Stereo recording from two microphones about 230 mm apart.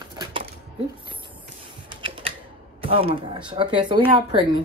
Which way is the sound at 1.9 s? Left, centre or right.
Right.